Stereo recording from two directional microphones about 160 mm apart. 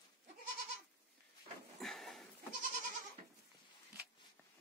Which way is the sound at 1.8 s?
Centre (ahead or behind).